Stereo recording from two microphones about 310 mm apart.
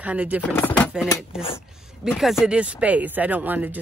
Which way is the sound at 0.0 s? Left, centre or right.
Centre.